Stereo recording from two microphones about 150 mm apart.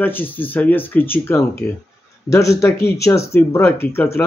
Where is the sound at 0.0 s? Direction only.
15° left (ahead or behind).